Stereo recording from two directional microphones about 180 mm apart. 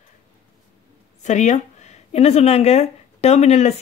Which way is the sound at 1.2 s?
40° left (ahead or behind).